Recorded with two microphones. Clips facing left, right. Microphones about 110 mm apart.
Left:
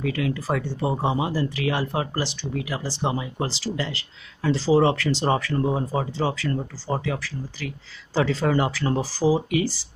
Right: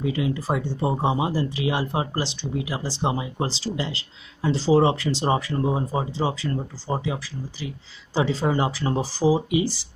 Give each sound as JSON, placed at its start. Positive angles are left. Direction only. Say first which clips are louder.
{"t": 0.0, "sound": "speech", "louder": "right 1 dB", "side_deg": -25}